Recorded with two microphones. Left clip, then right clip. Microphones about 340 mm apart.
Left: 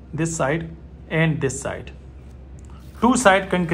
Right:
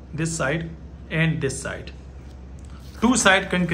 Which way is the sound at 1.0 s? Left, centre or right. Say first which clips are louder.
Left 3 dB; centre.